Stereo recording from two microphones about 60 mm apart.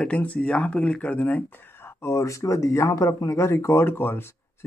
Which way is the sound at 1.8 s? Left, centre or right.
Left.